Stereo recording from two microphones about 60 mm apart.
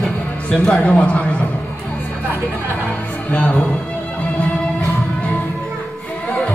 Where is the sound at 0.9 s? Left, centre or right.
Left.